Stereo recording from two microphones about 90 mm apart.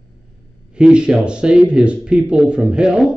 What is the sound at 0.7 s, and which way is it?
Speech, 10° right (ahead or behind).